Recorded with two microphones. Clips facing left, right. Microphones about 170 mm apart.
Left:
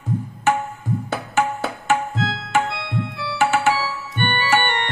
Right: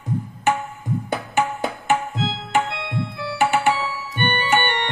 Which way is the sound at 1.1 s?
15° right (ahead or behind).